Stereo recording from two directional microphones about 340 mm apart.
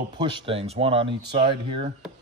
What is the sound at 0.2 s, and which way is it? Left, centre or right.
Speech, centre.